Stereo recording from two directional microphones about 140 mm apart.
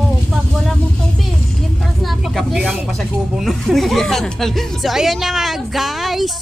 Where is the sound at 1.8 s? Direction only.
Centre (ahead or behind).